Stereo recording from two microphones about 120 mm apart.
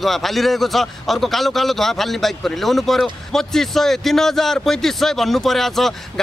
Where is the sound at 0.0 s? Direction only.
Centre (ahead or behind).